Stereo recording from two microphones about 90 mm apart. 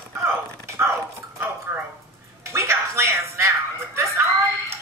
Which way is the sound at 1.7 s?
20° right (ahead or behind).